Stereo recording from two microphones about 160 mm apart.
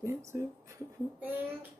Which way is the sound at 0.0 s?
15° right (ahead or behind).